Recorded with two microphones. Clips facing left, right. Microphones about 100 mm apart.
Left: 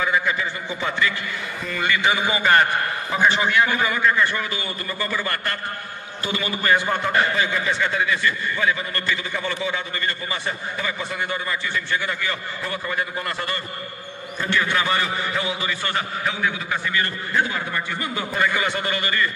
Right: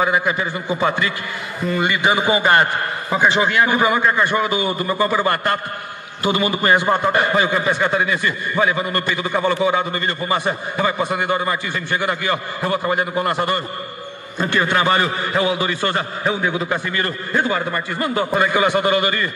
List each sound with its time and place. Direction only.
0.1 s a man's voice: 25° right (ahead or behind)
0.7 s a man's voice: 45° right (ahead or behind)
1.8 s a man's voice: 20° right (ahead or behind); by 8.3 s 35° right (ahead or behind)
9.1 s a man's voice: 50° right (ahead or behind)
9.9 s a man's voice: 30° right (ahead or behind)
10.3 s a man's voice: 50° right (ahead or behind)
11.0 s a man's voice: 65° right (ahead or behind)
11.5 s a man's voice: 50° right (ahead or behind)
12.7 s a man's voice: 35° right (ahead or behind)
14.5 s a man's voice: 50° right (ahead or behind)
15.8 s a man's voice: 25° right (ahead or behind)
16.5 s a man's voice: 60° right (ahead or behind); by 18.4 s 45° right (ahead or behind)
18.7 s a man's voice: 20° right (ahead or behind)